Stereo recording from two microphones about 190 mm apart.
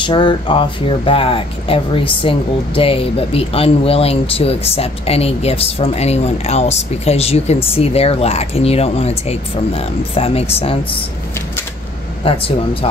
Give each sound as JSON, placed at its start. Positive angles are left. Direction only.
{"t": 0.0, "sound": "a woman's voice", "side_deg": 25}